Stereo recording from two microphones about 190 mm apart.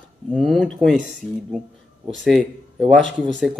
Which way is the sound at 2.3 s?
Centre (ahead or behind).